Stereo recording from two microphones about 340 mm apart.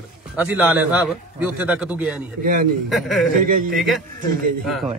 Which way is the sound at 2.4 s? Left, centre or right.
Right.